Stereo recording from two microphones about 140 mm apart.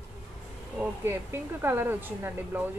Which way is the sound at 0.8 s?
15° right (ahead or behind).